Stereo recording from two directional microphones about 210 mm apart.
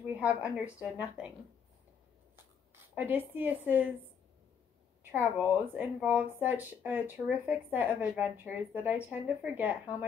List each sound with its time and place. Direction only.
0.0 s speech: 5° right (ahead or behind)
2.3 s a sound: 10° right (ahead or behind)
5.1 s speech: 10° right (ahead or behind)